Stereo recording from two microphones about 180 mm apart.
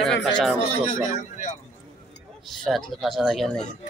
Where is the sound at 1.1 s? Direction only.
40° left (ahead or behind).